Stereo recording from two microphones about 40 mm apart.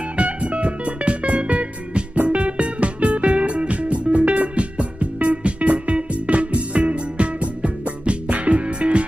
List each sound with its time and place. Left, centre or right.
0.2 s music: right